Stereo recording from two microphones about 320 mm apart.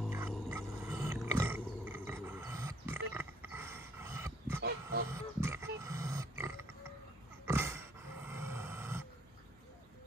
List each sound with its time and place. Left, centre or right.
0.0 s a sound: centre
4.6 s pig: right
5.1 s wild animals: centre
5.9 s grunt: centre
7.4 s dog: centre